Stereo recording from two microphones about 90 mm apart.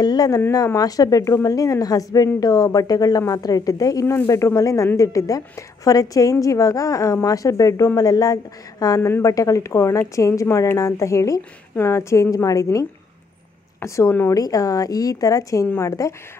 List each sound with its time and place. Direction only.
0.0 s a woman's voice: 50° left (ahead or behind)
13.8 s a woman's voice: 35° left (ahead or behind)
14.3 s a woman's voice: 40° left (ahead or behind)